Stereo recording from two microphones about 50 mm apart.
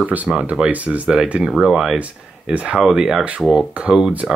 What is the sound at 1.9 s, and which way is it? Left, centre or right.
Speech, right.